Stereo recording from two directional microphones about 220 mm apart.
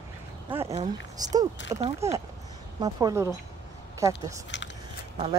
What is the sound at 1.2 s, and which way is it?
Speech, 15° right (ahead or behind).